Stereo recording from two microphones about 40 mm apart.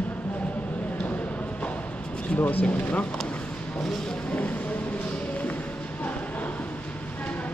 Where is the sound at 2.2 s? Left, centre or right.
Left.